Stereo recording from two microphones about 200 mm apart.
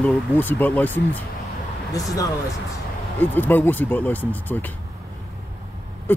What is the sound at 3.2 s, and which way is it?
Speech, 10° left (ahead or behind).